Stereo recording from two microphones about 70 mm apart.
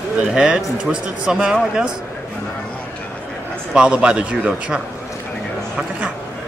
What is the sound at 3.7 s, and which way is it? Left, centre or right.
Speech, centre.